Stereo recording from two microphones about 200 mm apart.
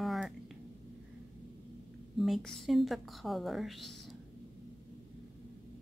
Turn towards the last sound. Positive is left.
turn(degrees=0)  # may be behind; listen again after turning